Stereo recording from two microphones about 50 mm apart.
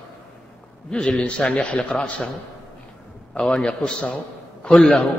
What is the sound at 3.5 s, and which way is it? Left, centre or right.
A man's voice, centre.